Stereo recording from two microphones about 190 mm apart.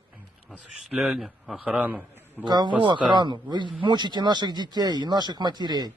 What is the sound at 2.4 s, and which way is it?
Speech, 25° right (ahead or behind).